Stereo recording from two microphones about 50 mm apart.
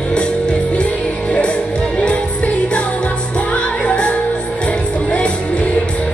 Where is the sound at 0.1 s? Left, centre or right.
Left.